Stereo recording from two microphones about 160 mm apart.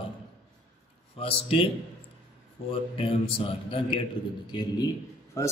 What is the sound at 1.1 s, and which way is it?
Speech, 35° left (ahead or behind).